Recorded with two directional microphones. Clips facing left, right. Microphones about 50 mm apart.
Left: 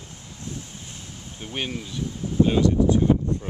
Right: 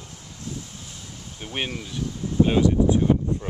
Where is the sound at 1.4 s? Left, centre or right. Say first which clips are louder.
Right 1 dB; centre.